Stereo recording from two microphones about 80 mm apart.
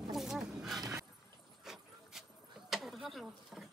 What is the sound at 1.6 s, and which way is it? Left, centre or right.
Vehicle, centre.